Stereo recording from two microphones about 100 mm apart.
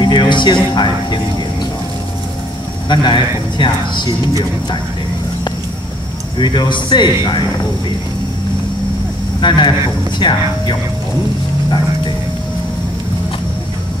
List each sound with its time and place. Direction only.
0.0 s speech: 50° left (ahead or behind)
2.9 s speech: 50° left (ahead or behind)
6.3 s speech: 50° left (ahead or behind)
9.4 s speech: 50° left (ahead or behind)